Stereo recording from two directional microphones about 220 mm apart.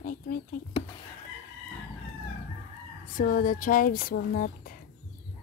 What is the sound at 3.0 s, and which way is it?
Speech, 40° left (ahead or behind).